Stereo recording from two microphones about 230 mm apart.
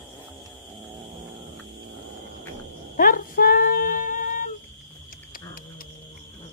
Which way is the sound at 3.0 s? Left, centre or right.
Left.